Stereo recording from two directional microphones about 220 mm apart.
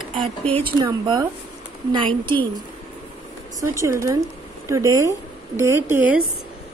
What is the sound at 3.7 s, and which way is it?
A woman's voice, 15° right (ahead or behind).